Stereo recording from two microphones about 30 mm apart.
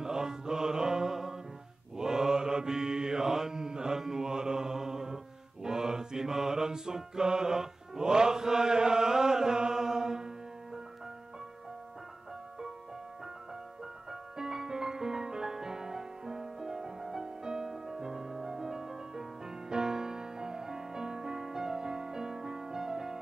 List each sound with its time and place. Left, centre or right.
0.0 s music: right
2.0 s mantra: centre
14.3 s music: centre
17.4 s music: right
17.6 s music: centre